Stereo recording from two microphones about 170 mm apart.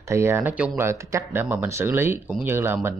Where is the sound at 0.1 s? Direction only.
15° right (ahead or behind).